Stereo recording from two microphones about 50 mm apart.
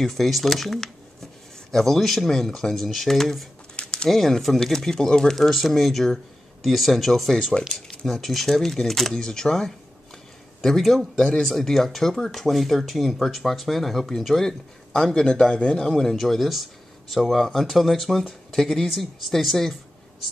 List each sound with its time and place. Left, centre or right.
0.0 s speech: centre
3.7 s a sound: centre
4.1 s speech: centre
15.8 s speech: centre